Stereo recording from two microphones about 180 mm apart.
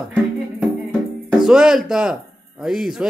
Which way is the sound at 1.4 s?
5° right (ahead or behind).